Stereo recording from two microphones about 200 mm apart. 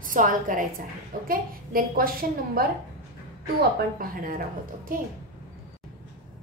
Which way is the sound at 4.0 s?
45° right (ahead or behind).